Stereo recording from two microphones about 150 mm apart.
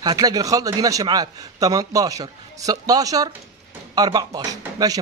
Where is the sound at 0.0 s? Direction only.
25° right (ahead or behind).